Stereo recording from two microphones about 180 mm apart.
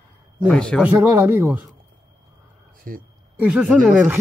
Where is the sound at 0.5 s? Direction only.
5° left (ahead or behind).